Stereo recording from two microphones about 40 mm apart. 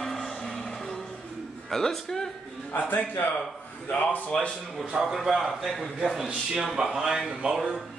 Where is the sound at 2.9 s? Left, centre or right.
Left.